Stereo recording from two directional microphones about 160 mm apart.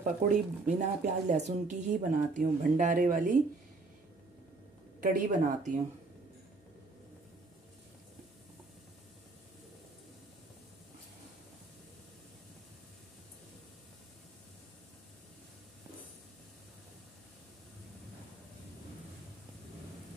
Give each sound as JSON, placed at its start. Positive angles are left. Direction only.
{"t": 0.0, "sound": "speech", "side_deg": -50}
{"t": 5.0, "sound": "speech", "side_deg": -55}